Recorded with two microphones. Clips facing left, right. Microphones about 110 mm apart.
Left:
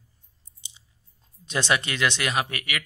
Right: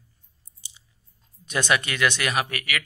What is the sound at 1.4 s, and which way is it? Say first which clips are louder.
A man's voice: right 1 dB; 25° left (ahead or behind).